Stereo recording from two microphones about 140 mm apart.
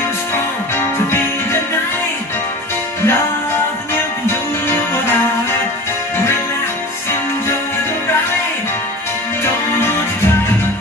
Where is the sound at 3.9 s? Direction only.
15° left (ahead or behind).